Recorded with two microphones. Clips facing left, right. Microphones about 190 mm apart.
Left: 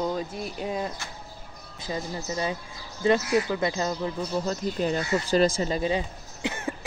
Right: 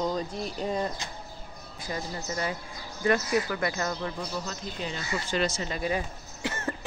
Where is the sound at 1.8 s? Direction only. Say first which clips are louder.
Left 3 dB; 20° left (ahead or behind).